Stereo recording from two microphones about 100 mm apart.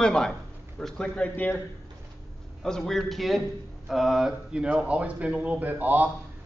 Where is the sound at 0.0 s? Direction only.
5° left (ahead or behind).